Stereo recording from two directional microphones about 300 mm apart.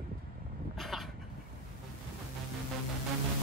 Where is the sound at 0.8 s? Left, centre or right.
Centre.